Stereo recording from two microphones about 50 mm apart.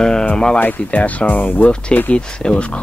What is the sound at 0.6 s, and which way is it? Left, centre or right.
Speech, left.